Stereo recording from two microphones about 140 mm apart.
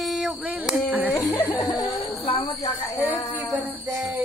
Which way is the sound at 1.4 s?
25° left (ahead or behind).